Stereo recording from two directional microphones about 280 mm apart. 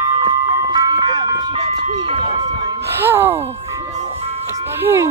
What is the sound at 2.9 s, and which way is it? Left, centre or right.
Music, centre.